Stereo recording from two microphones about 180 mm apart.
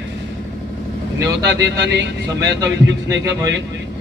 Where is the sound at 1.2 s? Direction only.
20° right (ahead or behind).